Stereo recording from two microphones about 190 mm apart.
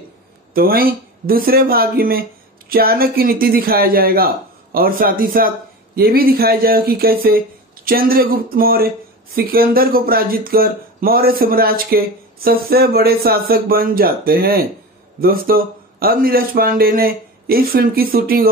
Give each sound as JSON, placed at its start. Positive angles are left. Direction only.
{"t": 0.6, "sound": "speech", "side_deg": -50}